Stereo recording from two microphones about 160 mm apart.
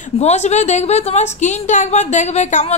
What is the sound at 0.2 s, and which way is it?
A woman's voice, 45° left (ahead or behind).